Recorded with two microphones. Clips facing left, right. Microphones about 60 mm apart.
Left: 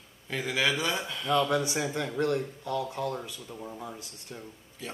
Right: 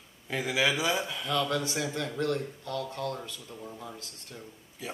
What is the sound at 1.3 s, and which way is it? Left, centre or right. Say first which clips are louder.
Speech: left 4 dB; centre.